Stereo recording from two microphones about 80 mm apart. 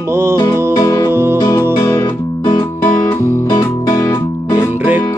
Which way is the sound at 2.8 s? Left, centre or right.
Left.